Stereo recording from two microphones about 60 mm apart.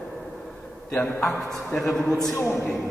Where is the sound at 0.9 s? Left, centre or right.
Centre.